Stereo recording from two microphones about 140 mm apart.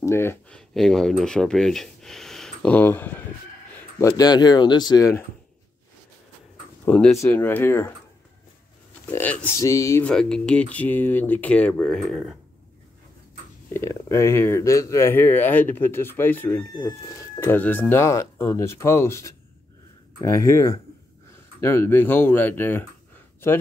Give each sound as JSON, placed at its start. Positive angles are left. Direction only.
{"t": 0.0, "sound": "speech", "side_deg": 20}
{"t": 0.6, "sound": "speech", "side_deg": 5}
{"t": 4.0, "sound": "speech", "side_deg": 30}
{"t": 6.9, "sound": "speech", "side_deg": 5}
{"t": 9.0, "sound": "speech", "side_deg": 10}
{"t": 9.6, "sound": "speech", "side_deg": 25}
{"t": 10.0, "sound": "speech", "side_deg": 5}
{"t": 13.7, "sound": "speech", "side_deg": 20}